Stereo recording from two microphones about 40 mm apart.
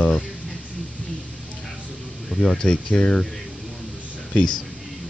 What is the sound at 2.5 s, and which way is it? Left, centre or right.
Speech, left.